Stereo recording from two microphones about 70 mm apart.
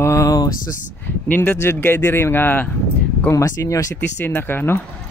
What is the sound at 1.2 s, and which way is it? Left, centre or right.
Speech, left.